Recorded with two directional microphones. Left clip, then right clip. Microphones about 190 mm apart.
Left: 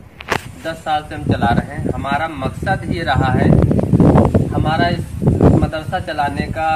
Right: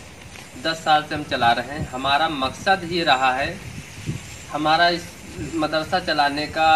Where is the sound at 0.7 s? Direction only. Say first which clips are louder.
Right 2 dB; 15° left (ahead or behind).